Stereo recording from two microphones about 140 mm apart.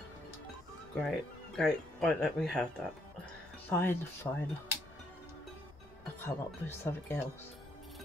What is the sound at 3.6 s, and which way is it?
Speech, 15° left (ahead or behind).